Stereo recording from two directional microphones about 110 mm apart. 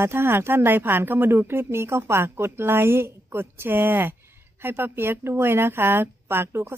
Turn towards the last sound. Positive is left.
turn(degrees=-20)  # may be behind; listen again after turning